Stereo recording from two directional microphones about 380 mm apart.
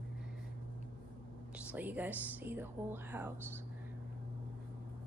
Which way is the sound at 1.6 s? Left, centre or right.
Centre.